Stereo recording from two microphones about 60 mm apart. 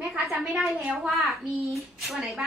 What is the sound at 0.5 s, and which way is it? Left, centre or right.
Speech, centre.